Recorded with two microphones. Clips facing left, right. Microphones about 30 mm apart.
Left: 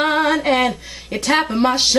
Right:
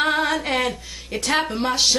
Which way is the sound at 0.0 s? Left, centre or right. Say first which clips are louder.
Left 4 dB; centre.